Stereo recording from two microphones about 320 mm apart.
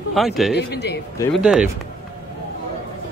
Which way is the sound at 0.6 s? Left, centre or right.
Left.